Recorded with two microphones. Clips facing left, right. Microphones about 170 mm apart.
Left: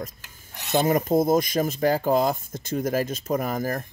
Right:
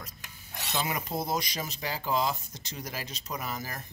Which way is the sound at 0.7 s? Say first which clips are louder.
Left 12 dB; 45° left (ahead or behind).